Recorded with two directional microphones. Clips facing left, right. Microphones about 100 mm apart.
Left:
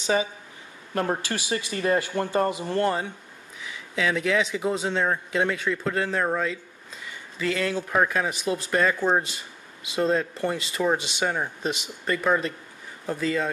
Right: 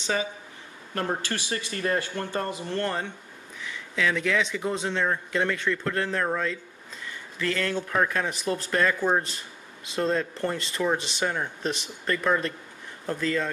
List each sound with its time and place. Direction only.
0.0 s speech: 15° left (ahead or behind)